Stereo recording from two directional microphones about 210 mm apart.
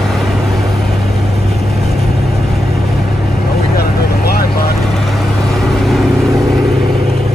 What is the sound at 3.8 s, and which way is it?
Vehicle, 45° left (ahead or behind).